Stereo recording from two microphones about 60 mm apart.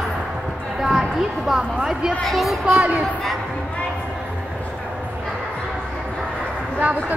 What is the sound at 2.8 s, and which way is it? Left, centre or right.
Speech, right.